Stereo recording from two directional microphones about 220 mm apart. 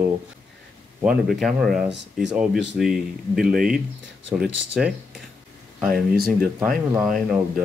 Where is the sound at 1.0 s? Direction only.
Centre (ahead or behind).